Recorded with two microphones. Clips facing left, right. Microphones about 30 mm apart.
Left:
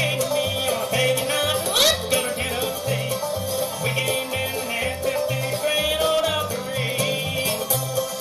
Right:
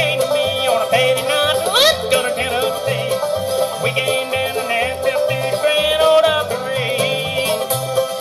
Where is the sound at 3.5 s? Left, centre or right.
Right.